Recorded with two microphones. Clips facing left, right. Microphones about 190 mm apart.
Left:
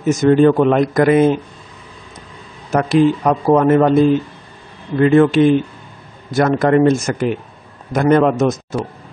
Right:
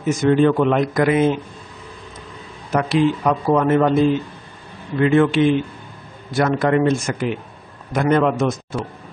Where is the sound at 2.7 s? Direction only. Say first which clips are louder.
Left 4 dB; 45° left (ahead or behind).